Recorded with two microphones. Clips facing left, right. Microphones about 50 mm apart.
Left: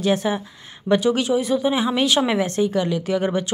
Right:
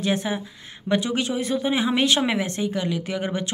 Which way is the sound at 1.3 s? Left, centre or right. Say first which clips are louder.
Left 6 dB; left.